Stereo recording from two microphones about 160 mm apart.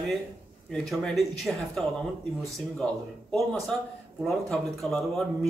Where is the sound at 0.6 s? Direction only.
Centre (ahead or behind).